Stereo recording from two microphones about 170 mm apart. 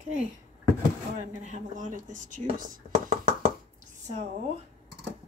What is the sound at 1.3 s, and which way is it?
Speech, 45° right (ahead or behind).